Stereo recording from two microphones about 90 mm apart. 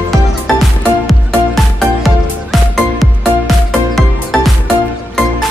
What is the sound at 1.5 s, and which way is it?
Music, centre (ahead or behind).